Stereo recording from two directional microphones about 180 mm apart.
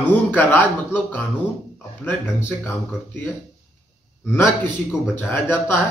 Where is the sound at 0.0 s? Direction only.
10° left (ahead or behind).